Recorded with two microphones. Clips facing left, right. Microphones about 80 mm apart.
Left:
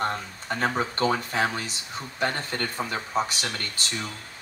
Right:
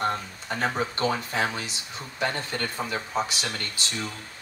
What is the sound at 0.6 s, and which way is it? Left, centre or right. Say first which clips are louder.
Speech: left 1 dB; left.